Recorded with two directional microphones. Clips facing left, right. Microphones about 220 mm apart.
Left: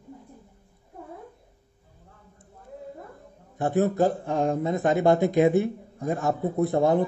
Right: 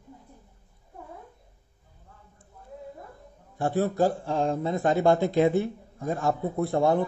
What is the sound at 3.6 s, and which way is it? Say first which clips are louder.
Speech: left 2 dB; 20° left (ahead or behind).